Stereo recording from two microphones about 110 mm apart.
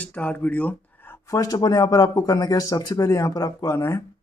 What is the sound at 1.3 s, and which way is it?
Speech, 35° left (ahead or behind).